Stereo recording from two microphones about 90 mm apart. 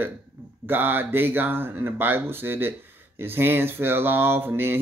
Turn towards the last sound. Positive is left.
turn(degrees=-25)  # may be behind; listen again after turning